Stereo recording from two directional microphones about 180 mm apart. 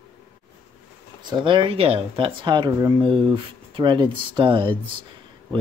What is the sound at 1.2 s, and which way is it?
Speech, 25° right (ahead or behind).